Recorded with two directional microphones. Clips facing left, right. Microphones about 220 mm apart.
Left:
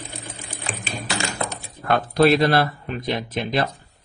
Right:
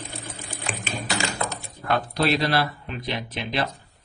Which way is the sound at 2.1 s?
50° left (ahead or behind).